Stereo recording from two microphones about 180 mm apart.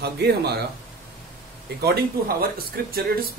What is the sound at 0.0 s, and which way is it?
Speech, 65° right (ahead or behind).